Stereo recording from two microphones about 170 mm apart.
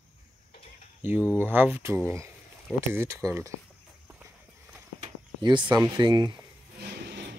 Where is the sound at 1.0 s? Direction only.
10° right (ahead or behind).